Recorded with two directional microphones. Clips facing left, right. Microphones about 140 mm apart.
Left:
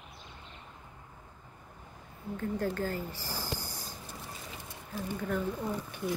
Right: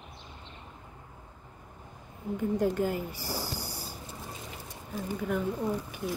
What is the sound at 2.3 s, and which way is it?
Speech, 15° right (ahead or behind).